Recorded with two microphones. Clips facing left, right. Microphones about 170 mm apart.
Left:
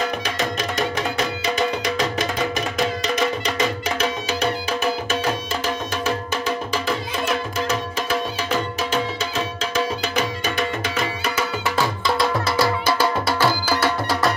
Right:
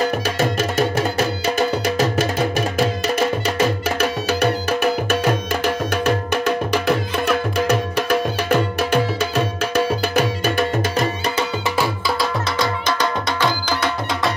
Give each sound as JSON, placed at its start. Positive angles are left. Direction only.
{"t": 0.7, "sound": "music", "side_deg": -5}
{"t": 3.5, "sound": "music", "side_deg": -55}
{"t": 11.7, "sound": "music", "side_deg": -10}
{"t": 12.5, "sound": "music", "side_deg": 5}